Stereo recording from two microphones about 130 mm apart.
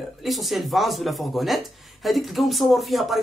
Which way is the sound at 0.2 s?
Centre (ahead or behind).